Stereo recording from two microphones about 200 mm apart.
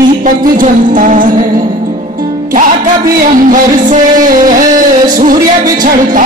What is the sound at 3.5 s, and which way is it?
Music, 40° right (ahead or behind).